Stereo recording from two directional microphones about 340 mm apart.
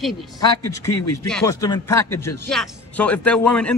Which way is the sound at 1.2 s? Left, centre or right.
Centre.